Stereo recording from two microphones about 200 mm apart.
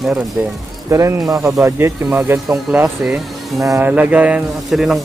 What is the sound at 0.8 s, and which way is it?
Speech, 15° right (ahead or behind).